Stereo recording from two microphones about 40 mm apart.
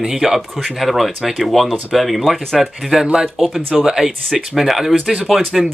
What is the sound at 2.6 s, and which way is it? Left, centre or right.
Speech, centre.